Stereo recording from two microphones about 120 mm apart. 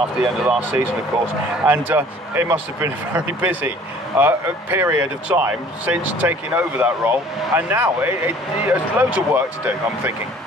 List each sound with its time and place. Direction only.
0.2 s speech: 15° right (ahead or behind)